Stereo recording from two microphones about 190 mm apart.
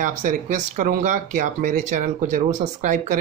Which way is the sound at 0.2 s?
45° right (ahead or behind).